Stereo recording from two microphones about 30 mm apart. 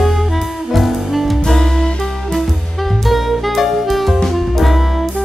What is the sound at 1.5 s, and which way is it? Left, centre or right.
Music, centre.